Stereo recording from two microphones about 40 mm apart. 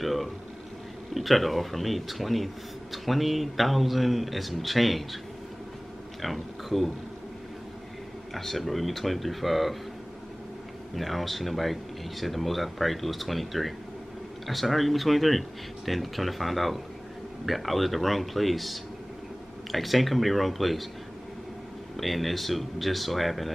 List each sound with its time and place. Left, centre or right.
0.0 s a sound: centre
1.1 s speech: centre
6.2 s speech: centre
8.4 s speech: centre
11.0 s speech: centre
21.9 s speech: centre